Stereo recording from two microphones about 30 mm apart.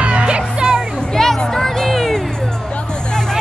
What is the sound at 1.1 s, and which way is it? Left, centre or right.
Music, centre.